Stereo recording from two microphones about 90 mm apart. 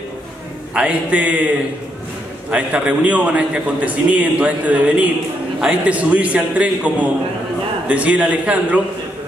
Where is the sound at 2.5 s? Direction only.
15° right (ahead or behind).